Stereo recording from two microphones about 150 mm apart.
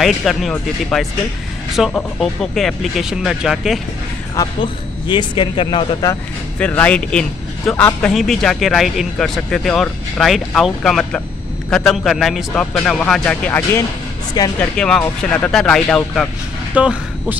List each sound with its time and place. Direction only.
0.0 s speech: centre (ahead or behind)
4.4 s speech: 35° left (ahead or behind)
6.6 s speech: 10° left (ahead or behind)
8.1 s speech: centre (ahead or behind)
16.7 s speech: 10° right (ahead or behind)